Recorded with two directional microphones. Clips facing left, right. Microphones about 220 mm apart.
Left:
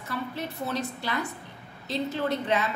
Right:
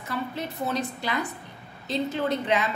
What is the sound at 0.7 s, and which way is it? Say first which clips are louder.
A woman's voice: even; 15° right (ahead or behind).